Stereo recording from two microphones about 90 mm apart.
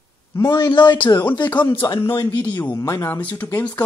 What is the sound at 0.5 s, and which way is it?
Speech, 55° left (ahead or behind).